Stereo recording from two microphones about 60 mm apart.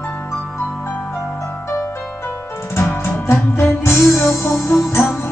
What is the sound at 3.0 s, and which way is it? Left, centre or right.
Music, left.